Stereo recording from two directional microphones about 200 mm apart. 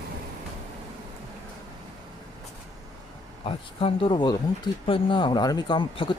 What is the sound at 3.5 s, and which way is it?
Speech, 25° left (ahead or behind).